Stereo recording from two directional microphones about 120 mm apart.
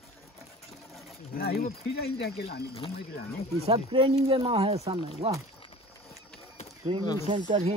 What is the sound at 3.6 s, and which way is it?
Speech, 45° right (ahead or behind).